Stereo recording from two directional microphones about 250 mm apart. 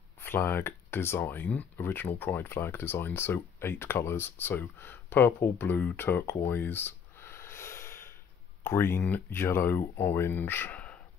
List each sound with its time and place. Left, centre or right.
0.2 s speech: centre